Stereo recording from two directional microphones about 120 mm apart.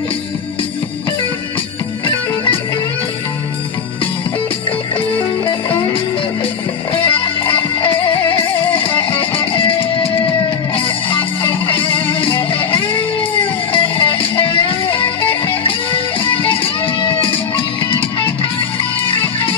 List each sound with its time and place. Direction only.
2.0 s music: 45° left (ahead or behind)
5.4 s music: 45° left (ahead or behind)